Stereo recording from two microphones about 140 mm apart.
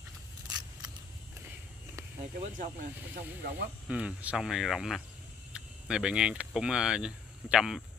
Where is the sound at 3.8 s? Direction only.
10° right (ahead or behind).